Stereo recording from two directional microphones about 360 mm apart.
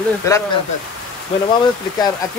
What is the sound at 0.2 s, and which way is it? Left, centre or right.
Speech, centre.